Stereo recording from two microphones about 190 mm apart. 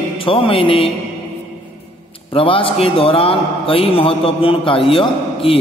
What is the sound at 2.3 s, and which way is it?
A man's voice, 30° left (ahead or behind).